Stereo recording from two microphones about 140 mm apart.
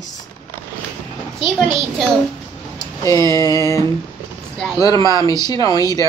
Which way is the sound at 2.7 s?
20° left (ahead or behind).